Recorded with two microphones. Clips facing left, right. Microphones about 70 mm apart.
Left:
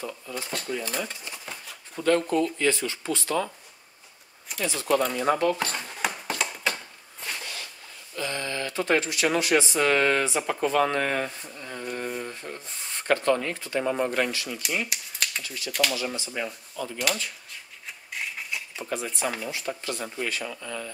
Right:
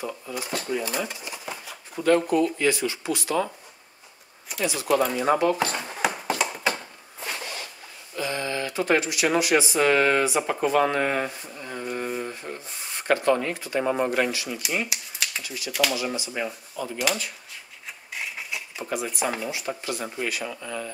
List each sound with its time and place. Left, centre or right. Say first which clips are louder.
0.0 s speech: right 2 dB; centre
4.6 s speech: right 2 dB; centre
6.2 s a sound: right 4 dB; centre
8.2 s speech: right 2 dB; centre
11.8 s a sound: right 2 dB; centre
14.5 s typewriter: right 2 dB; centre
15.4 s speech: right 3 dB; centre
18.1 s a sound: even; centre
18.9 s speech: right 2 dB; centre